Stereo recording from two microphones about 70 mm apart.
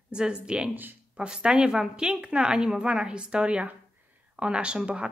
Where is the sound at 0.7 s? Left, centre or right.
Right.